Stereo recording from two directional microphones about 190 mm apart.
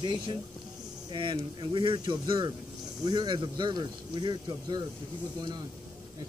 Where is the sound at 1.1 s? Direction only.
25° right (ahead or behind).